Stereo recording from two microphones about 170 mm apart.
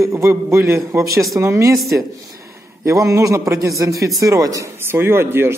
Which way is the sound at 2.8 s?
20° right (ahead or behind).